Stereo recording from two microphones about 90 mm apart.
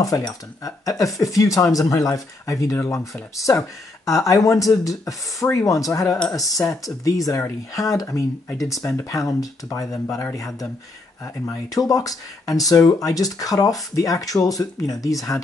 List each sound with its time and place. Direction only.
0.0 s speech: 40° left (ahead or behind)